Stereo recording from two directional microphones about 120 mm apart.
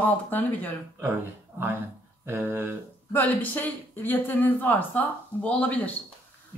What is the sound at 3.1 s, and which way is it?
Speech, 15° left (ahead or behind).